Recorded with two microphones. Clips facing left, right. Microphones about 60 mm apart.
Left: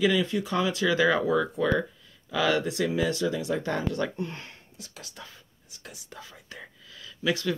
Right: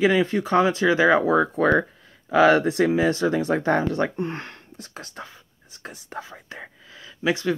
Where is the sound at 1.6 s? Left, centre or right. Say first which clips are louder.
Right 6 dB; right.